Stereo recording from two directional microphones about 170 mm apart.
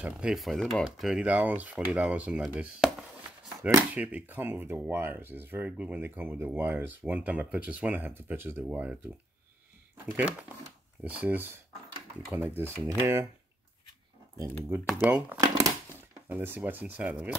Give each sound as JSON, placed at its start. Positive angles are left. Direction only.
{"t": 0.0, "sound": "speech", "side_deg": -5}
{"t": 11.1, "sound": "speech", "side_deg": -10}
{"t": 14.9, "sound": "speech", "side_deg": -5}
{"t": 15.4, "sound": "a sound", "side_deg": -20}
{"t": 16.3, "sound": "speech", "side_deg": -10}